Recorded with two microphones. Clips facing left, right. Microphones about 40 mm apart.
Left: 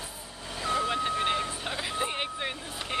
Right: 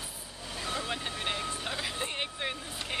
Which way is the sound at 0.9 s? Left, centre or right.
Centre.